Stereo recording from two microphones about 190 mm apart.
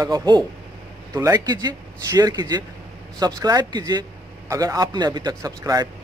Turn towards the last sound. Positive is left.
turn(degrees=-20)  # may be behind; listen again after turning